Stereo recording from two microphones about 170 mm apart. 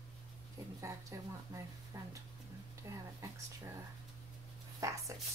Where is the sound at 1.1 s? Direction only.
20° right (ahead or behind).